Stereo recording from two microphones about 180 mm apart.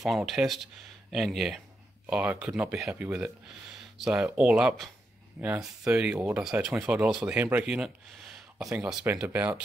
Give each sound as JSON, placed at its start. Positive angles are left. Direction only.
{"t": 0.0, "sound": "speech", "side_deg": 0}
{"t": 6.1, "sound": "speech", "side_deg": -15}
{"t": 6.4, "sound": "speech", "side_deg": -5}